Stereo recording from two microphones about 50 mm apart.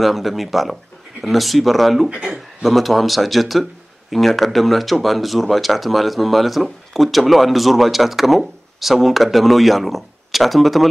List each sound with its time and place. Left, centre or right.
0.0 s speech: centre
2.0 s speech: centre
2.3 s speech: centre